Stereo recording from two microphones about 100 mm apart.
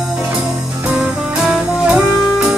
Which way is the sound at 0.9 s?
5° right (ahead or behind).